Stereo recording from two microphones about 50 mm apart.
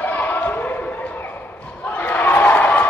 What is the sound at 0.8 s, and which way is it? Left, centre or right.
Bow-wow, left.